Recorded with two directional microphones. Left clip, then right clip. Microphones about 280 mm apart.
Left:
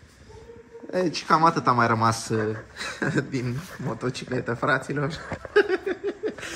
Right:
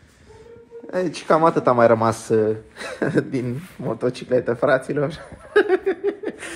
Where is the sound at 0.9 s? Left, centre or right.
Centre; by 6.5 s right.